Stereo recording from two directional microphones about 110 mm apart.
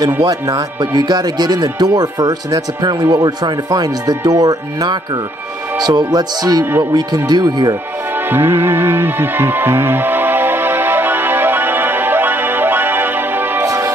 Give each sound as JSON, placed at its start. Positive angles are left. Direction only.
{"t": 0.2, "sound": "speech", "side_deg": -30}
{"t": 8.3, "sound": "music", "side_deg": -20}